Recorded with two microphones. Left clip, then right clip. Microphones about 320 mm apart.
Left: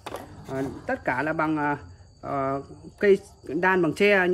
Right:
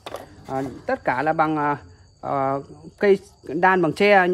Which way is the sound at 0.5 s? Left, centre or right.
Right.